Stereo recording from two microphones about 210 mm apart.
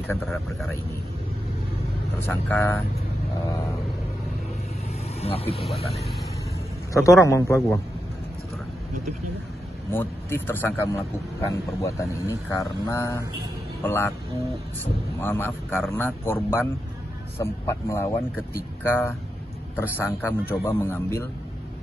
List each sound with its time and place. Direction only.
0.1 s speech: centre (ahead or behind)
2.1 s a man's voice: 10° left (ahead or behind)
5.2 s speech: 30° left (ahead or behind)
6.9 s a man's voice: 15° left (ahead or behind)
9.9 s a man's voice: 10° left (ahead or behind)
15.1 s a man's voice: 10° left (ahead or behind)